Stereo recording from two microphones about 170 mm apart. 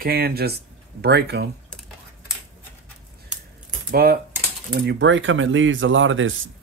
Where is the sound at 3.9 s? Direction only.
60° right (ahead or behind).